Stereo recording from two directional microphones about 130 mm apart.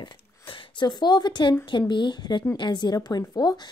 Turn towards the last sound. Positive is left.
turn(degrees=35)  # may be behind; listen again after turning